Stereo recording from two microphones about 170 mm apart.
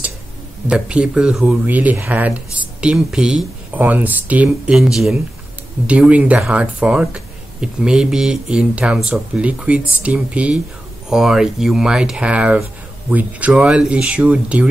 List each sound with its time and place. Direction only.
0.7 s speech: 5° right (ahead or behind)